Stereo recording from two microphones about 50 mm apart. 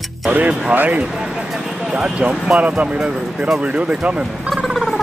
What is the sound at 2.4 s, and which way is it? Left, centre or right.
Speech, centre.